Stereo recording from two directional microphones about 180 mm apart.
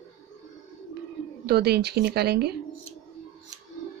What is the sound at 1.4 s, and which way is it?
A woman's voice, 60° right (ahead or behind).